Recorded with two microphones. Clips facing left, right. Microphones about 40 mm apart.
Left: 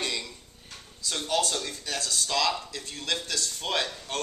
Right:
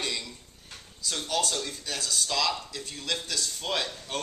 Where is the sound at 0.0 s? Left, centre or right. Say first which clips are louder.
Left 1 dB; centre.